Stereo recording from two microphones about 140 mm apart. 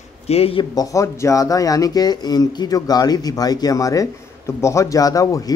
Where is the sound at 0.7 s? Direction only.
25° left (ahead or behind).